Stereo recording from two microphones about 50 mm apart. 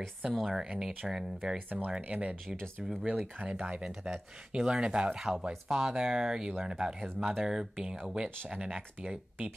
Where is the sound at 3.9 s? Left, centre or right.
Centre.